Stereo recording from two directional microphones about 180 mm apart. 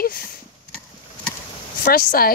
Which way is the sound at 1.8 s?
55° left (ahead or behind).